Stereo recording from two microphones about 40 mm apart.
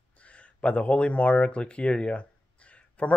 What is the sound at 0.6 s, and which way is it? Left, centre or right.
Speech, left.